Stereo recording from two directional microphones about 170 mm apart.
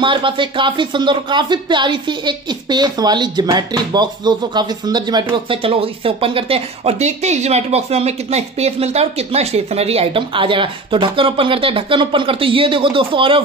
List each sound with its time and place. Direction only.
0.0 s speech: 30° right (ahead or behind)